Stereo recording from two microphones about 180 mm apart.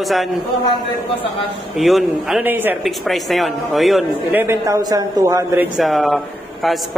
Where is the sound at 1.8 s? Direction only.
Centre (ahead or behind).